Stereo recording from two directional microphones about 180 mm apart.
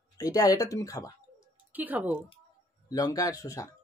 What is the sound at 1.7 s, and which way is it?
Speech, 10° right (ahead or behind).